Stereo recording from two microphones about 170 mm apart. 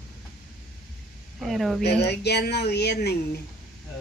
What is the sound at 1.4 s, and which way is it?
Speech, centre (ahead or behind).